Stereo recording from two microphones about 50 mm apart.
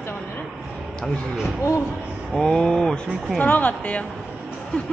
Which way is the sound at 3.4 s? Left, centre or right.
Left.